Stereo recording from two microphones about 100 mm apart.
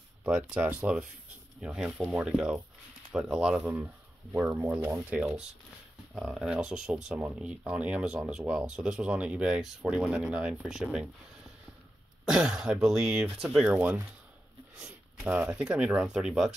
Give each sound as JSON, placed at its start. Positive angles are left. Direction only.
{"t": 0.2, "sound": "speech", "side_deg": -10}
{"t": 6.1, "sound": "speech", "side_deg": -5}
{"t": 12.3, "sound": "speech", "side_deg": -5}